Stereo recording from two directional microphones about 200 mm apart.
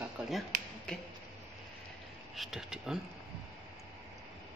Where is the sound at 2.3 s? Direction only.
Centre (ahead or behind).